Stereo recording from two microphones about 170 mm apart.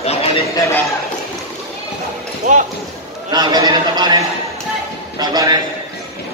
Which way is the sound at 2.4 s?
45° right (ahead or behind).